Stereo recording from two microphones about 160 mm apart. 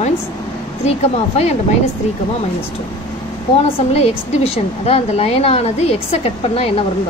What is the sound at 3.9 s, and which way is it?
A woman's voice, 40° left (ahead or behind).